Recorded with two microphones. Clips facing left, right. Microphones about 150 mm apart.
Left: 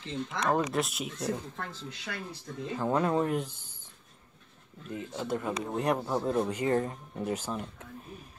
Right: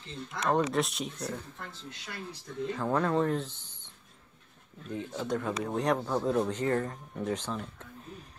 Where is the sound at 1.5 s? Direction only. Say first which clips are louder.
Left 4 dB; 90° left.